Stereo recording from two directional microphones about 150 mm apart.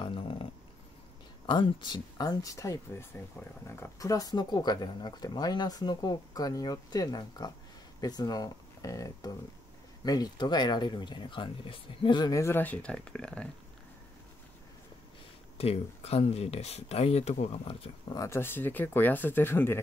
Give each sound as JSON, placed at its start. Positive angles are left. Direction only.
{"t": 0.0, "sound": "dog", "side_deg": 35}
{"t": 1.4, "sound": "speech", "side_deg": 30}
{"t": 15.5, "sound": "speech", "side_deg": 45}
{"t": 18.0, "sound": "speech", "side_deg": 25}